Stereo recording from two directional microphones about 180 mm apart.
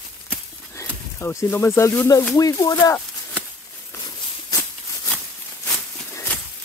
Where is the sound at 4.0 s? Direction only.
25° left (ahead or behind).